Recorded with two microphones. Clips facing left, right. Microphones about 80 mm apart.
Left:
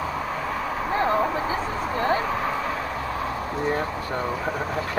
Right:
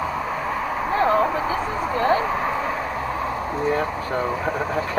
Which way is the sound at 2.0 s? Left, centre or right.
Right.